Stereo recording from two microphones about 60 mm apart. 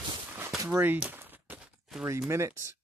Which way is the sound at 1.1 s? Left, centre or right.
Right.